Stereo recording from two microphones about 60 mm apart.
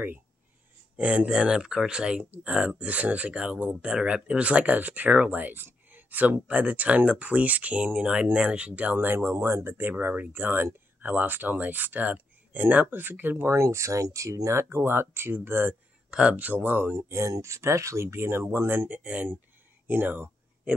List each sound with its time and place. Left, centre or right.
0.9 s speech: right
8.9 s speech: right
13.5 s speech: right
16.1 s speech: centre
17.3 s speech: right
18.9 s speech: right
19.9 s a sound: right